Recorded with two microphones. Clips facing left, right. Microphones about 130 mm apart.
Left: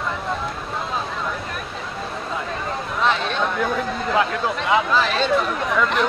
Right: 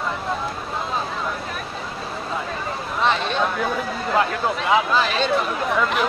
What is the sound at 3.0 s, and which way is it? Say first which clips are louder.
Speech: right 1 dB; centre (ahead or behind).